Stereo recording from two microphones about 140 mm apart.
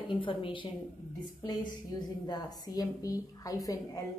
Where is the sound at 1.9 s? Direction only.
30° left (ahead or behind).